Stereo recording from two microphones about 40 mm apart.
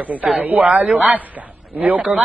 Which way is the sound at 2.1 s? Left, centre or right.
Centre.